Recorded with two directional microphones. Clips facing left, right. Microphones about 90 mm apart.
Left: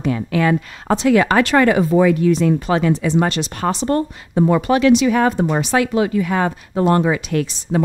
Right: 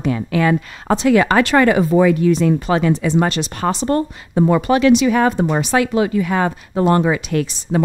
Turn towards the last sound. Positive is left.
turn(degrees=-20)  # may be behind; listen again after turning